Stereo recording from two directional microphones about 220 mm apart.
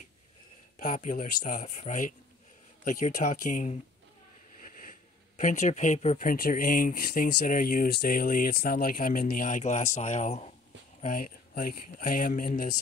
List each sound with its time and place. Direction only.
0.7 s speech: 35° left (ahead or behind)
5.4 s speech: 35° left (ahead or behind)